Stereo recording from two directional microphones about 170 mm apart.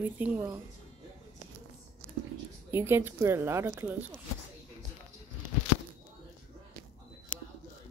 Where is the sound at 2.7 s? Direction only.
10° right (ahead or behind).